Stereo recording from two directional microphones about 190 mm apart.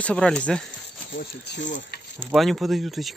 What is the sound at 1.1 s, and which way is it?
Speech, 60° left (ahead or behind).